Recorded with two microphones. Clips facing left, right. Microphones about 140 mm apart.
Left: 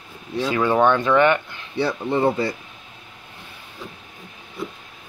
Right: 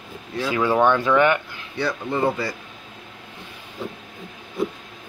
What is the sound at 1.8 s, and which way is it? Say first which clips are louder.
Speech: left 2 dB; 25° left (ahead or behind).